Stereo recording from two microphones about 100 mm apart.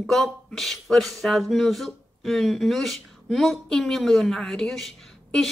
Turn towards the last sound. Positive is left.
turn(degrees=0)  # may be behind; listen again after turning